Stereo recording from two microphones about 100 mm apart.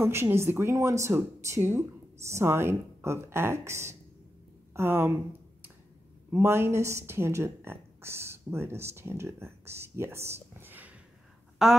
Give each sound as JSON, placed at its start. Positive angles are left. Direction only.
{"t": 0.0, "sound": "speech", "side_deg": -25}
{"t": 6.3, "sound": "a woman's voice", "side_deg": -25}
{"t": 11.6, "sound": "a sound", "side_deg": -5}